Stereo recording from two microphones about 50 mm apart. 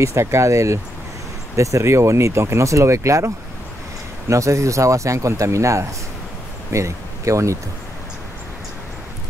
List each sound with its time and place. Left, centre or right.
0.0 s speech: right
4.3 s speech: right